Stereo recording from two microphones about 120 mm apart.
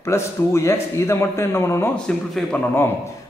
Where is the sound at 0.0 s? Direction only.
20° left (ahead or behind).